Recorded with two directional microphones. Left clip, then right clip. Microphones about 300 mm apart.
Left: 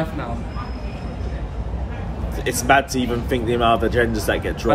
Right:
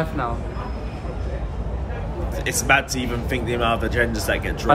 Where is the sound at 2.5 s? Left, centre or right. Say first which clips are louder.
Left 2 dB; centre.